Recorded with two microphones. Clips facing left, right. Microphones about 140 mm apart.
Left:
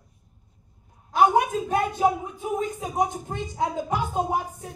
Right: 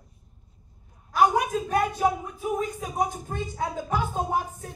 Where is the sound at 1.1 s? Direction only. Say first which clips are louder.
Left 2 dB; 25° left (ahead or behind).